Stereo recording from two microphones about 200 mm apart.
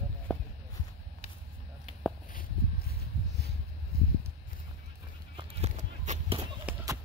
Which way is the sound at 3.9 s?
50° left (ahead or behind).